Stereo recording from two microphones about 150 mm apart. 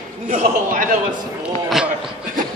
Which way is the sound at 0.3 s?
60° right (ahead or behind).